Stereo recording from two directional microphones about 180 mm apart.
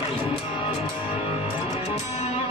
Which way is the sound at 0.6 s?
30° left (ahead or behind).